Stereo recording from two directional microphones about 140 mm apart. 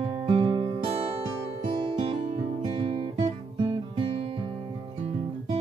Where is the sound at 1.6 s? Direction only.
35° right (ahead or behind).